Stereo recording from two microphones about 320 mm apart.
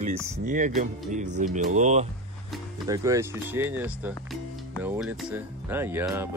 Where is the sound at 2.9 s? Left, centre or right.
Centre.